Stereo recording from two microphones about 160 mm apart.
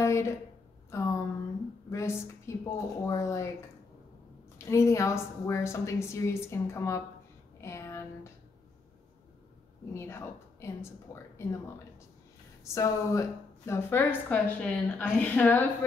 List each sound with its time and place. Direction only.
0.0 s a sound: 15° left (ahead or behind)
1.9 s a woman's voice: 20° left (ahead or behind)
4.6 s a woman's voice: 20° left (ahead or behind)
7.6 s a sound: 15° left (ahead or behind)
9.9 s a woman's voice: 15° left (ahead or behind)
12.6 s a woman's voice: 20° left (ahead or behind)